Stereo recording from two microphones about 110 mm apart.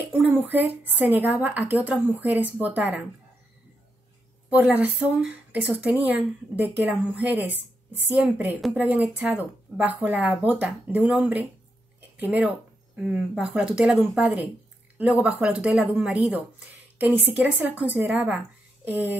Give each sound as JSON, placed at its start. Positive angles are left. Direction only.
{"t": 0.0, "sound": "a woman's voice", "side_deg": -20}
{"t": 4.5, "sound": "a woman's voice", "side_deg": -15}